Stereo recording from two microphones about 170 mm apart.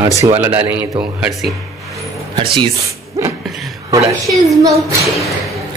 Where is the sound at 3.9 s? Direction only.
20° right (ahead or behind).